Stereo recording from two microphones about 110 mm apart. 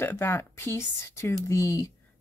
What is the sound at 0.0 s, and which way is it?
Speech, 20° left (ahead or behind).